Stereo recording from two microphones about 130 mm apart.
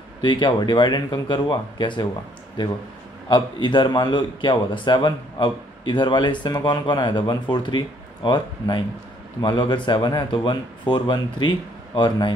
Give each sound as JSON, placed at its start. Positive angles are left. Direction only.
{"t": 0.2, "sound": "a man's voice", "side_deg": 35}
{"t": 3.3, "sound": "a man's voice", "side_deg": 35}